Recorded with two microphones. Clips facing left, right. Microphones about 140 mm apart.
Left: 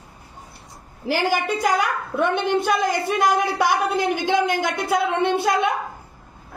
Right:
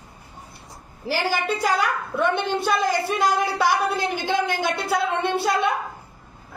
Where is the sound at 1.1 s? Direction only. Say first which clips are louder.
Left 2 dB; 15° left (ahead or behind).